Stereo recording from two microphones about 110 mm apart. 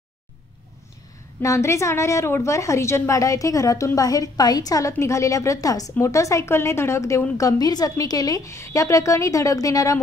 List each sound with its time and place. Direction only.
1.4 s a woman's voice: 25° left (ahead or behind)